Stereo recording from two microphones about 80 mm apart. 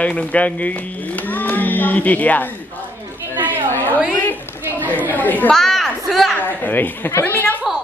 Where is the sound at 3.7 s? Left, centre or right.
Left.